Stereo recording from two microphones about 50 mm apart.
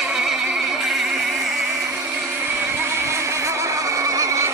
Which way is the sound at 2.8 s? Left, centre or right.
Right.